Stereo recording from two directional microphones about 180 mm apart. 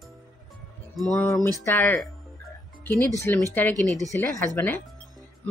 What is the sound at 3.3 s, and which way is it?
Speech, 10° left (ahead or behind).